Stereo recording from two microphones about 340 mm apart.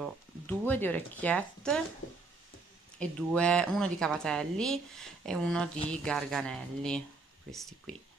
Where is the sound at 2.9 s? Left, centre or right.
Centre.